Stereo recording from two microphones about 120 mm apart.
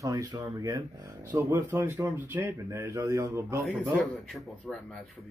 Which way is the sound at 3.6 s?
Centre (ahead or behind).